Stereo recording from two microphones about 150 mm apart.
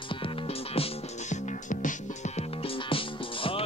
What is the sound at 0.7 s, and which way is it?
Music, 40° left (ahead or behind).